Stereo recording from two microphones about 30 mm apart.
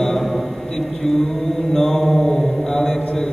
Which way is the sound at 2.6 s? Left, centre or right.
Centre.